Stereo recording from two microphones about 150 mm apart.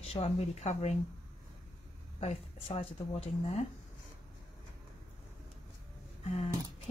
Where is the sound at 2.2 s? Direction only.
40° left (ahead or behind).